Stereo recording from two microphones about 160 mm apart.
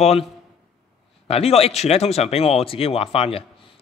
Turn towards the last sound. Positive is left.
turn(degrees=35)  # may be behind; listen again after turning